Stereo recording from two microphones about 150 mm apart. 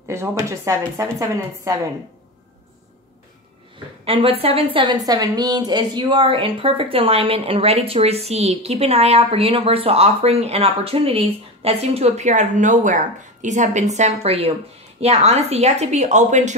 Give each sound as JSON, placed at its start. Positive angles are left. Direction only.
{"t": 0.1, "sound": "speech", "side_deg": -15}
{"t": 4.0, "sound": "a woman's voice", "side_deg": -40}